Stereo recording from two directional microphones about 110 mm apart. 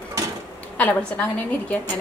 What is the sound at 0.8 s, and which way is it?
A woman's voice, 15° left (ahead or behind).